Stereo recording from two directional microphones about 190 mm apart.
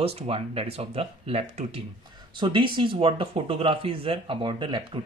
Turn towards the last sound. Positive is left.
turn(degrees=-25)  # may be behind; listen again after turning